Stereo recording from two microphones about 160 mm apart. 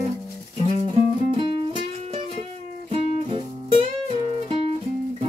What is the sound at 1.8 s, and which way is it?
Music, 35° right (ahead or behind).